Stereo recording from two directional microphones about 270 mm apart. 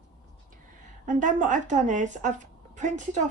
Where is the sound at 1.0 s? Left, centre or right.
Right.